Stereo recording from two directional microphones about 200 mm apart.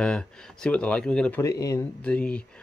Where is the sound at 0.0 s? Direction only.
5° left (ahead or behind).